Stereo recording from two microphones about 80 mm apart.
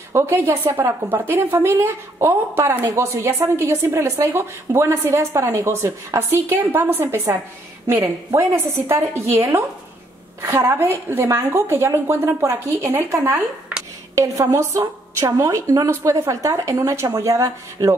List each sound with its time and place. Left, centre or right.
0.1 s a woman's voice: right
2.8 s a woman's voice: right
3.2 s a woman's voice: right
13.1 s a woman's voice: right